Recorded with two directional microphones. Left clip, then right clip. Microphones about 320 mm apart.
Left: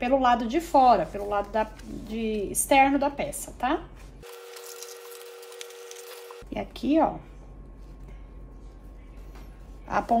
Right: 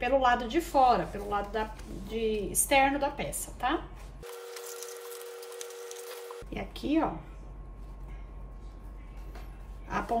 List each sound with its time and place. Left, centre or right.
0.0 s speech: centre
4.2 s a sound: centre
6.5 s speech: centre